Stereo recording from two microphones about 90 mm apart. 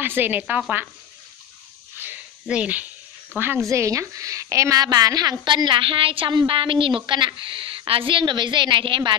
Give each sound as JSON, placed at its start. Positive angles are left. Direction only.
{"t": 0.0, "sound": "a woman's voice", "side_deg": -25}
{"t": 2.4, "sound": "a woman's voice", "side_deg": -15}
{"t": 3.6, "sound": "a woman's voice", "side_deg": -35}